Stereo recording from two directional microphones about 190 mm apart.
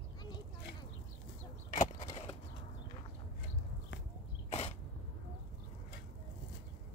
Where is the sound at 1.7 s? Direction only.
40° left (ahead or behind).